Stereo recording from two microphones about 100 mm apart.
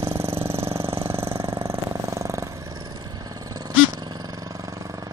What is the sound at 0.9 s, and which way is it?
Vehicle, 25° right (ahead or behind).